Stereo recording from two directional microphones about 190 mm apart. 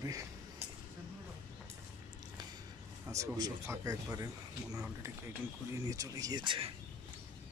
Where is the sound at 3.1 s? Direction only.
20° right (ahead or behind).